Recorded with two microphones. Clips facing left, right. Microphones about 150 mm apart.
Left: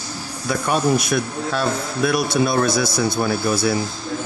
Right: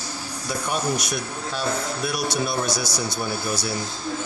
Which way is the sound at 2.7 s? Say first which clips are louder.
Left 7 dB; 55° left (ahead or behind).